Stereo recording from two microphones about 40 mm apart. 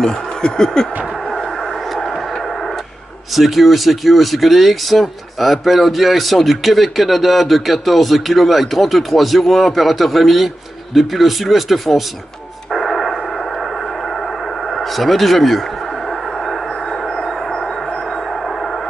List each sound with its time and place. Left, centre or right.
0.0 s snicker: centre
3.3 s speech: centre
12.7 s radio: centre
14.8 s speech: centre